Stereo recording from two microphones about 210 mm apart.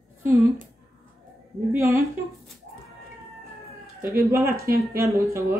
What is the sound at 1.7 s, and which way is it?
Speech, 10° right (ahead or behind).